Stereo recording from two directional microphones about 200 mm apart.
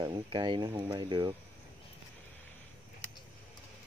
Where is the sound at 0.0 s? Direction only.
20° right (ahead or behind).